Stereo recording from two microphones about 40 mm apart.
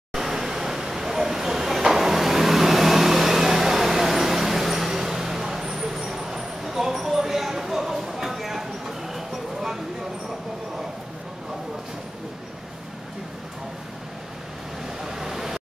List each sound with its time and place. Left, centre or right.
0.1 s vehicle: centre
6.9 s a sound: centre
15.0 s waves: centre